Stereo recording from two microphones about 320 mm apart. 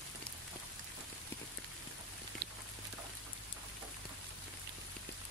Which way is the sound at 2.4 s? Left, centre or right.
Right.